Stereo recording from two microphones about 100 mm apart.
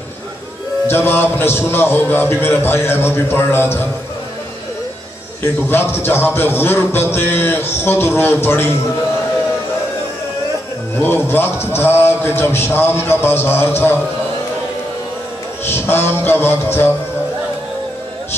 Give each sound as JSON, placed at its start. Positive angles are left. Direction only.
{"t": 0.8, "sound": "a man's voice", "side_deg": 25}
{"t": 5.4, "sound": "a man's voice", "side_deg": 25}
{"t": 11.0, "sound": "a man's voice", "side_deg": 25}
{"t": 15.6, "sound": "a man's voice", "side_deg": 25}